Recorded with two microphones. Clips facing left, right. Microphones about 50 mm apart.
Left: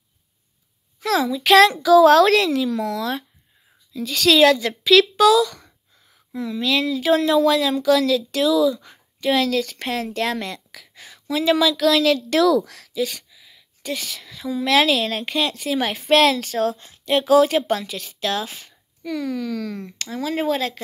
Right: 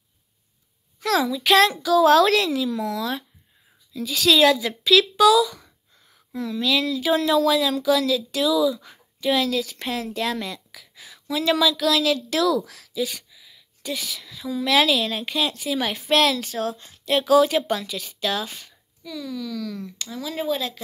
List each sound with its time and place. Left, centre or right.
1.0 s a woman's voice: centre
6.3 s a woman's voice: centre
13.4 s a sound: centre
13.9 s a woman's voice: centre
19.0 s speech: left